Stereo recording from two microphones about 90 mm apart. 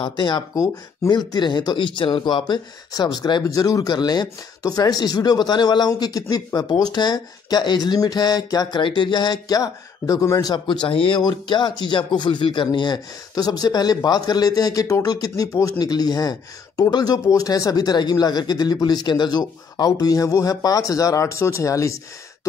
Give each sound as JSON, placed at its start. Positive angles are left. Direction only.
{"t": 0.0, "sound": "speech", "side_deg": 55}
{"t": 0.6, "sound": "speech", "side_deg": 45}
{"t": 3.4, "sound": "speech", "side_deg": 40}
{"t": 10.5, "sound": "speech", "side_deg": 60}
{"t": 11.1, "sound": "speech", "side_deg": 55}